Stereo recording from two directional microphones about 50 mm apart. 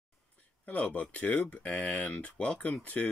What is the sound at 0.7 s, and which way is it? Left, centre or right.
Speech, left.